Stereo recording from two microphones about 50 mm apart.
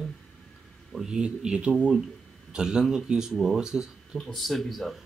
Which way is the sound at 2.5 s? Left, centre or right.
Centre.